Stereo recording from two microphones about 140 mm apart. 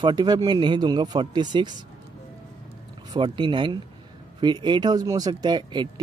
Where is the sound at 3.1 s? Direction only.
35° right (ahead or behind).